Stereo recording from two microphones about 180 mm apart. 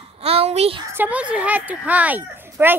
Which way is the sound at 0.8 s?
10° right (ahead or behind).